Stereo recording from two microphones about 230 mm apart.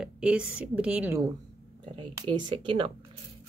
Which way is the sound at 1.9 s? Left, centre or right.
Right.